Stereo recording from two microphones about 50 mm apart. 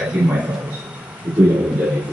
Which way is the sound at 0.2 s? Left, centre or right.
Right.